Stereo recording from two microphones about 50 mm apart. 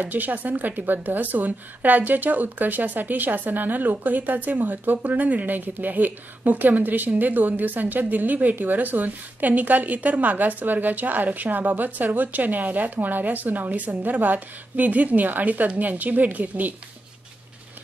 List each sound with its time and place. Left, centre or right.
0.0 s speech: right